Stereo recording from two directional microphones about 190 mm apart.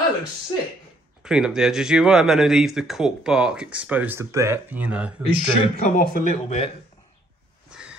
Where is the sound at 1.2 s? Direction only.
5° right (ahead or behind).